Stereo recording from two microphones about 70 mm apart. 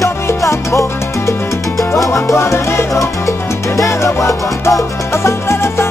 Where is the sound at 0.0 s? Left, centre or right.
Left.